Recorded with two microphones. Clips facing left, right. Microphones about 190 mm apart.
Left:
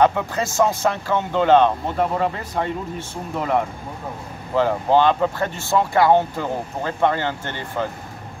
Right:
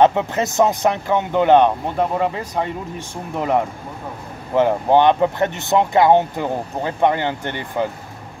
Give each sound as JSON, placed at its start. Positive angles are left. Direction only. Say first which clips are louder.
{"t": 0.0, "sound": "speech", "louder": "right 3 dB", "side_deg": -20}
{"t": 4.6, "sound": "speech", "louder": "right 2 dB", "side_deg": -20}